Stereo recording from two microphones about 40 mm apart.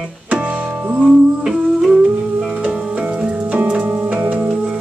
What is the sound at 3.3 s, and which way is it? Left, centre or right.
Music, right.